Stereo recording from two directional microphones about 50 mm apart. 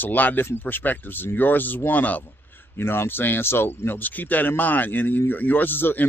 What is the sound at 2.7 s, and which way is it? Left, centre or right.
Speech, left.